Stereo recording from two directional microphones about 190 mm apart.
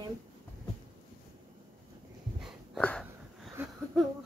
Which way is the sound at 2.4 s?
5° left (ahead or behind).